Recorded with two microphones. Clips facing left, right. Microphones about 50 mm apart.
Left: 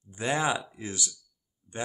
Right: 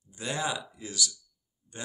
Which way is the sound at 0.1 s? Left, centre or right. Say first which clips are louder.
Left 5 dB; left.